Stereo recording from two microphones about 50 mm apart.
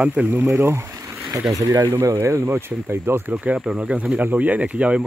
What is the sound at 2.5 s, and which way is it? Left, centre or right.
Speech, right.